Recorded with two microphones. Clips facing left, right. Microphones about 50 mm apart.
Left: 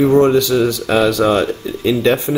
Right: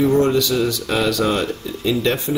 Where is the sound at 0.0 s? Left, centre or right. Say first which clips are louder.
Left 5 dB; left.